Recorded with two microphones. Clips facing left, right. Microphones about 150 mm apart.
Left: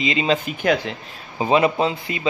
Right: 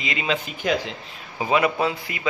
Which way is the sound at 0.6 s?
60° left (ahead or behind).